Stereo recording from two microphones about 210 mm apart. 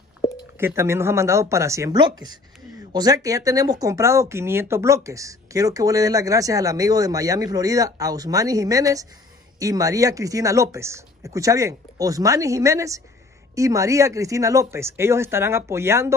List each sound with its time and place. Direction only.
0.6 s speech: 10° right (ahead or behind)